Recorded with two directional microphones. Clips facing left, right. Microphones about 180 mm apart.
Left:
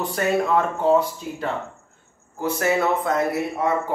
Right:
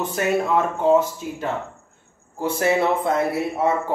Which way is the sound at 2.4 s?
30° right (ahead or behind).